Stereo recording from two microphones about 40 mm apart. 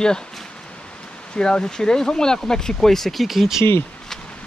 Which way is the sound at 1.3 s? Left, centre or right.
Left.